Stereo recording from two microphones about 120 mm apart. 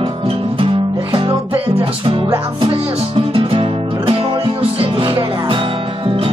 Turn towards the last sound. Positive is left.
turn(degrees=-50)  # may be behind; listen again after turning